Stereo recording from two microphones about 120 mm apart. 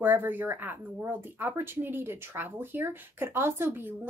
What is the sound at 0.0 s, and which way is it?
Speech, 15° right (ahead or behind).